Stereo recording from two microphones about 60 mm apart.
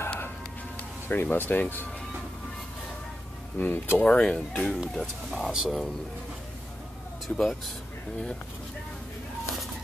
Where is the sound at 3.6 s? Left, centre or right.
Left.